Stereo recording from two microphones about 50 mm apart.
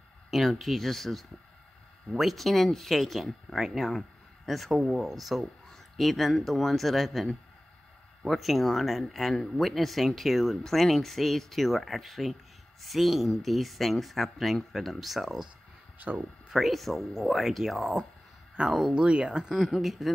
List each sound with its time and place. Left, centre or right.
0.3 s speech: centre
16.0 s speech: right
16.4 s speech: centre
18.9 s speech: centre
19.5 s speech: centre